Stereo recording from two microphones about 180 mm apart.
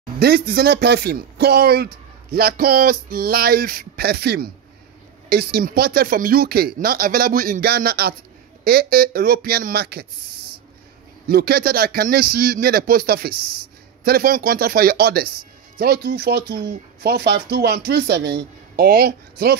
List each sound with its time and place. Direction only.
0.2 s speech: 60° right (ahead or behind)
11.2 s speech: 60° right (ahead or behind)